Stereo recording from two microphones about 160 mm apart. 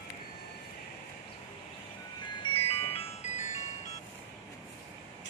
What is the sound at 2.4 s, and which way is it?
Music, 35° left (ahead or behind).